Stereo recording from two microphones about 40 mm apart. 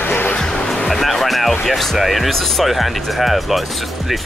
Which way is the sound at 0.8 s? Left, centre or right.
Centre.